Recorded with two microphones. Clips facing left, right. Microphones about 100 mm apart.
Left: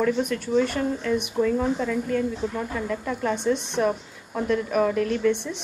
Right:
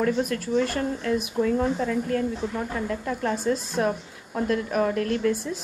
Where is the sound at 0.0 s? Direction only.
40° right (ahead or behind).